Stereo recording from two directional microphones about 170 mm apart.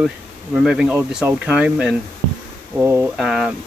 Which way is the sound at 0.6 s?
5° right (ahead or behind).